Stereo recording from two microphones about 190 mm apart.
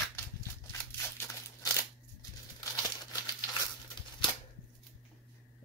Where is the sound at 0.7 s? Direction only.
15° left (ahead or behind).